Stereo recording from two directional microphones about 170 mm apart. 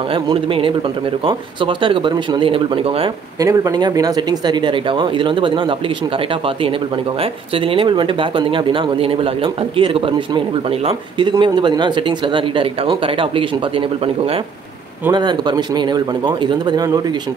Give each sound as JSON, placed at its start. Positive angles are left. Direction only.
{"t": 0.1, "sound": "speech", "side_deg": -30}
{"t": 3.3, "sound": "speech", "side_deg": -20}